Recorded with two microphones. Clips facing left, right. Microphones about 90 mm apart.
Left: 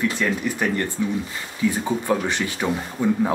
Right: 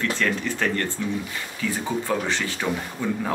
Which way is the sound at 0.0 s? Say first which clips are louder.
Left 2 dB; 15° left (ahead or behind).